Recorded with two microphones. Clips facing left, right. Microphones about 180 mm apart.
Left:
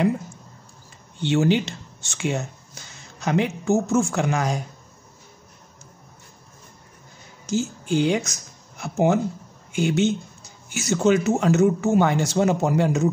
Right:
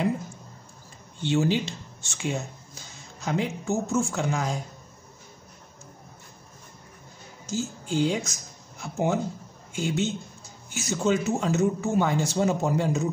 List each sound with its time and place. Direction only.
1.2 s speech: 75° left (ahead or behind)
7.4 s a man's voice: 75° left (ahead or behind)